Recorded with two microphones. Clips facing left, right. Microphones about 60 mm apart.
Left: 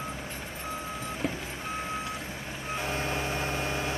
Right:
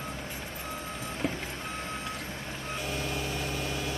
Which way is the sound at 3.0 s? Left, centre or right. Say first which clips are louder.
Left 3 dB; left.